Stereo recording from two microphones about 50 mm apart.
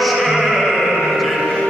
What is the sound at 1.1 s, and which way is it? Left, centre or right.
Music, centre.